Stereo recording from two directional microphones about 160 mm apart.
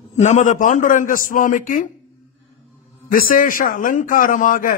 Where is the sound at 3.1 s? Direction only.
60° left (ahead or behind).